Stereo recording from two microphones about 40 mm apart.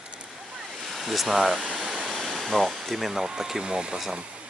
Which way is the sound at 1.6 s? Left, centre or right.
Right.